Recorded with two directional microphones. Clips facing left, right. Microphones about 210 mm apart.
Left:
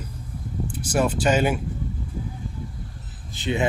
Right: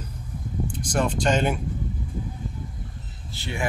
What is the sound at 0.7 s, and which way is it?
Speech, 5° left (ahead or behind).